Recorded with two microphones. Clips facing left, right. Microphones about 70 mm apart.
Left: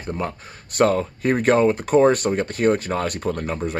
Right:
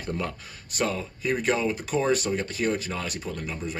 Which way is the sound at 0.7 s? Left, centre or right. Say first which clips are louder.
Left 10 dB; left.